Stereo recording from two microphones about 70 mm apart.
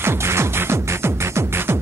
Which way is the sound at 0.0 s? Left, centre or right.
Right.